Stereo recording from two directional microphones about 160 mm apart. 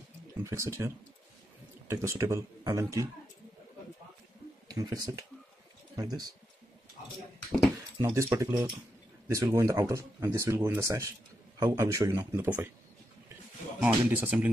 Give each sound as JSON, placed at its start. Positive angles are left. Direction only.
{"t": 0.4, "sound": "speech", "side_deg": -15}
{"t": 4.6, "sound": "speech", "side_deg": -20}
{"t": 8.0, "sound": "speech", "side_deg": -20}
{"t": 13.7, "sound": "speech", "side_deg": -10}